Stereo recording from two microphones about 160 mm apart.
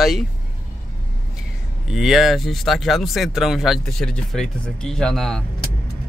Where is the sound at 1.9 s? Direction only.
Centre (ahead or behind).